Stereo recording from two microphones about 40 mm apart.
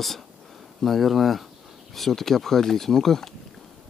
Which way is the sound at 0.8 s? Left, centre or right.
Centre.